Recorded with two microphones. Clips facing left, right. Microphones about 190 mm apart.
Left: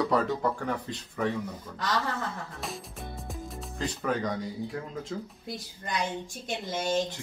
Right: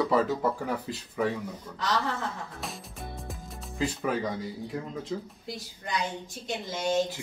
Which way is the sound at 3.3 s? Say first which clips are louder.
Left 3 dB; 5° right (ahead or behind).